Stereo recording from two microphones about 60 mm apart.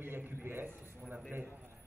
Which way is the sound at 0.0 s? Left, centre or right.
Right.